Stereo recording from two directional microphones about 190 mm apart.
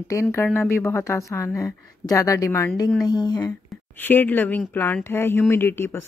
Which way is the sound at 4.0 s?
10° left (ahead or behind).